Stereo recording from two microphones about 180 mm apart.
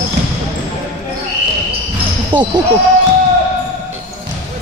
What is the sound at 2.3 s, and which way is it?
Speech, 25° right (ahead or behind).